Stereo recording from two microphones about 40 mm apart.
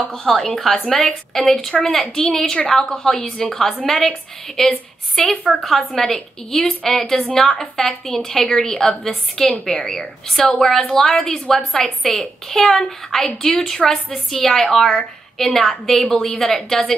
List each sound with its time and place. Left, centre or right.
0.4 s a woman's voice: centre